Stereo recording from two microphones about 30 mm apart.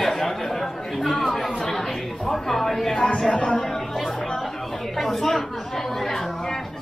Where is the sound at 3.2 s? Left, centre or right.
Left.